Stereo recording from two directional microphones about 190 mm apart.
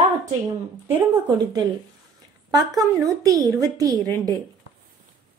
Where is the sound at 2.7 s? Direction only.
20° right (ahead or behind).